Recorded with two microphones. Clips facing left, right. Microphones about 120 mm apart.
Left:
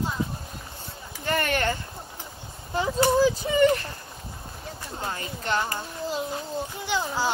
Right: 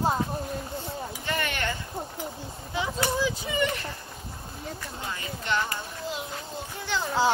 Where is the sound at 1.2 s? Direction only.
45° left (ahead or behind).